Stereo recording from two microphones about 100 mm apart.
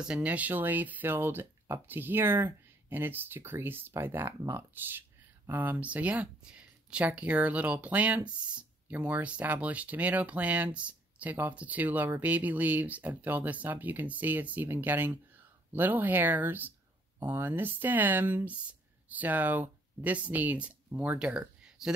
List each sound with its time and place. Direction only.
0.0 s speech: 10° right (ahead or behind)